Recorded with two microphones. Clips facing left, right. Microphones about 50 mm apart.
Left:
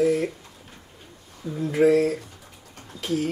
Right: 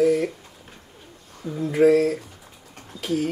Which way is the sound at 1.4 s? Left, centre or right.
Right.